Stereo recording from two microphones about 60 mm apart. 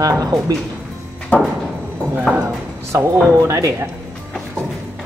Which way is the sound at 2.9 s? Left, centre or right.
Right.